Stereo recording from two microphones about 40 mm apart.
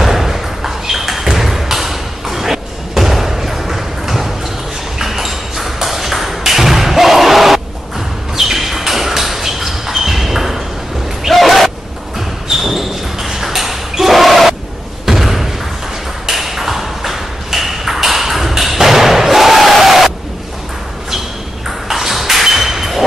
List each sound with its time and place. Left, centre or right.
0.0 s a sound: centre
4.9 s ping: centre
8.4 s a sound: centre
15.0 s slam: centre
16.3 s ping: centre
21.6 s ping: centre